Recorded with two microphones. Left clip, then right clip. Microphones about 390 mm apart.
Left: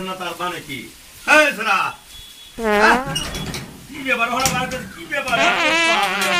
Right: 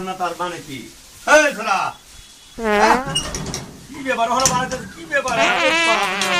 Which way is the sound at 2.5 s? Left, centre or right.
Centre.